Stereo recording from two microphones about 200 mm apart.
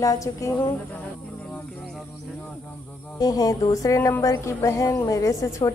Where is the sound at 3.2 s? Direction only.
20° left (ahead or behind).